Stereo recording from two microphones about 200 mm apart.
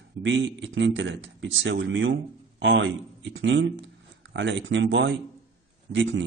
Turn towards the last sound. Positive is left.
turn(degrees=-65)  # may be behind; listen again after turning